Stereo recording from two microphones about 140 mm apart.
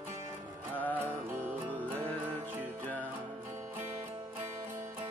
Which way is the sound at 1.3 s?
15° right (ahead or behind).